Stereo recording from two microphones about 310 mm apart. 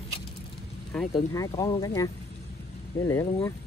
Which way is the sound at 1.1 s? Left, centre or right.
Centre.